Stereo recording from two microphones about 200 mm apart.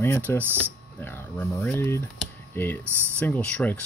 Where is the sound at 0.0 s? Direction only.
10° left (ahead or behind).